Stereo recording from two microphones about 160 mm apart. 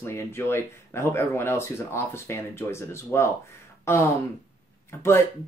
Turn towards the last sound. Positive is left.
turn(degrees=15)  # may be behind; listen again after turning